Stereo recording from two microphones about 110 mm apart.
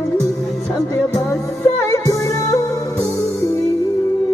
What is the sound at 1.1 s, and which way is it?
Music, 25° left (ahead or behind).